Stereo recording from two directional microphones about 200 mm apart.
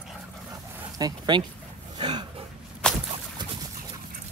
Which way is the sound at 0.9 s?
20° right (ahead or behind).